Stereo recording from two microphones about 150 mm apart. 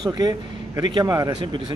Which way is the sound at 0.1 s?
25° right (ahead or behind).